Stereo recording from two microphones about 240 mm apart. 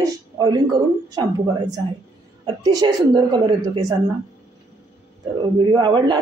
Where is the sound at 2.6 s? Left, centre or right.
Centre.